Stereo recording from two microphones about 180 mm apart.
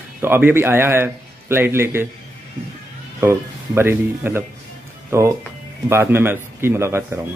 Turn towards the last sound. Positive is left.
turn(degrees=-15)  # may be behind; listen again after turning